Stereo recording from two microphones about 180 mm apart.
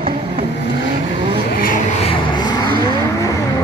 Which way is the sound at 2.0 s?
30° left (ahead or behind).